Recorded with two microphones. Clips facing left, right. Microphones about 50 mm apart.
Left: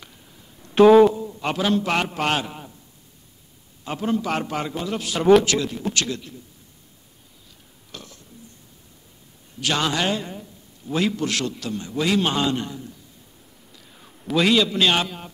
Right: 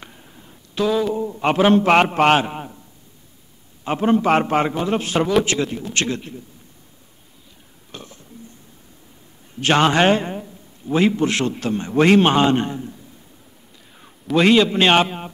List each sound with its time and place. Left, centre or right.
0.0 s a sound: right
0.7 s a sound: left
1.1 s a man's voice: right
3.8 s a man's voice: right
7.9 s burping: right
9.6 s a man's voice: right
14.3 s a man's voice: right